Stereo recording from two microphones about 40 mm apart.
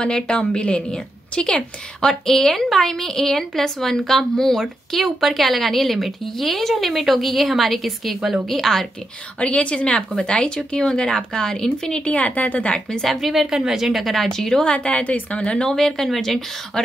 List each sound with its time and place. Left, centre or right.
0.0 s a woman's voice: left
9.4 s a woman's voice: left
12.0 s a woman's voice: left
13.1 s a woman's voice: centre
13.4 s a woman's voice: centre
13.9 s a woman's voice: centre
14.6 s a woman's voice: left
15.7 s a woman's voice: centre